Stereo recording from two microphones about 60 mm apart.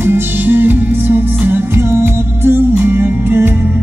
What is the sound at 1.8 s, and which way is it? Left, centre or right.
Music, right.